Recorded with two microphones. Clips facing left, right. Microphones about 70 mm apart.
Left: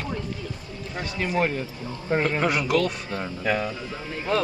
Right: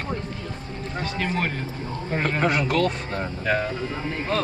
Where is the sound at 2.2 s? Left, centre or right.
Right.